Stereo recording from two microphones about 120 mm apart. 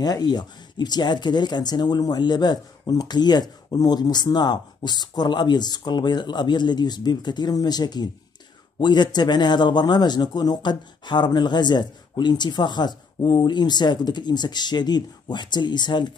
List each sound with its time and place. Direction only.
0.0 s speech: 35° left (ahead or behind)